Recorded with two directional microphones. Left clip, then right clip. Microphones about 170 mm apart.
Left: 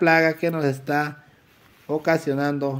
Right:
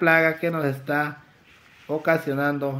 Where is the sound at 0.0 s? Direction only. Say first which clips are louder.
Left 1 dB; 45° left (ahead or behind).